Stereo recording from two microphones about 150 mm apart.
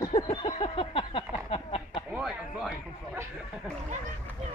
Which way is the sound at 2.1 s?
5° right (ahead or behind).